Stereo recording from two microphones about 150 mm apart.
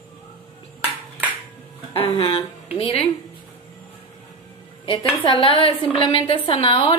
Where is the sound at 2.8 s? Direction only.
40° left (ahead or behind).